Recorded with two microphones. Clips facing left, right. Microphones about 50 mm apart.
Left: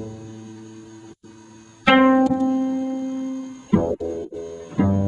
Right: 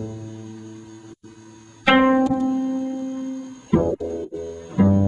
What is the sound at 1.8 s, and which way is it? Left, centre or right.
Music, centre.